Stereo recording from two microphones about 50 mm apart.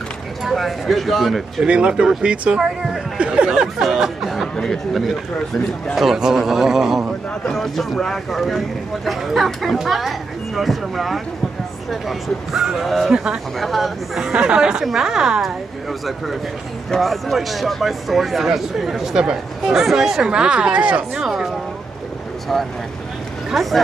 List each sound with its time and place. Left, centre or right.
0.4 s speech: centre
1.6 s speech: right
2.5 s speech: centre
3.2 s speech: right
3.4 s speech: centre
4.6 s speech: centre
5.9 s speech: centre
7.4 s speech: centre
13.1 s speech: centre
13.6 s speech: centre
14.3 s speech: centre
17.0 s speech: centre; by 21.2 s right
21.2 s speech: centre
23.5 s speech: centre